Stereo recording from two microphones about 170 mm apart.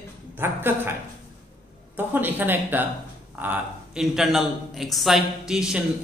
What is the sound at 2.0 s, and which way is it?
A man's voice, 10° right (ahead or behind).